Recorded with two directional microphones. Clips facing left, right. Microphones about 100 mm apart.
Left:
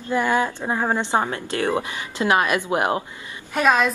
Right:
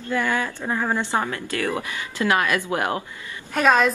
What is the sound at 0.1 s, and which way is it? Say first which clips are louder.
Speech: left 3 dB; 20° left (ahead or behind).